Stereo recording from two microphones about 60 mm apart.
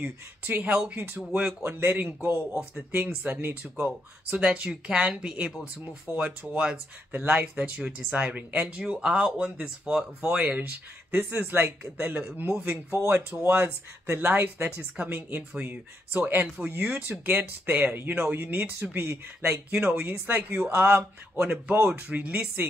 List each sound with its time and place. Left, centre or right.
0.0 s speech: right
1.2 s speech: centre
1.6 s speech: right